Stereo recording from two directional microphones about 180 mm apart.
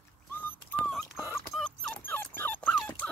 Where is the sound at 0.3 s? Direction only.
10° left (ahead or behind).